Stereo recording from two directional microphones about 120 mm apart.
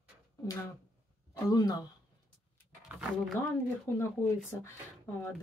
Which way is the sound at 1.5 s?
35° left (ahead or behind).